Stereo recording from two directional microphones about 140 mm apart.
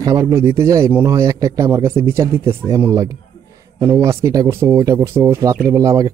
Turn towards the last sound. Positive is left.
turn(degrees=-25)  # may be behind; listen again after turning